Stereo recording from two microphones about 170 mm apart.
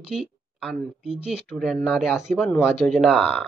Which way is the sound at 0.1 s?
Centre (ahead or behind).